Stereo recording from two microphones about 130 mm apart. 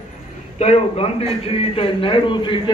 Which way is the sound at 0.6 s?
55° left (ahead or behind).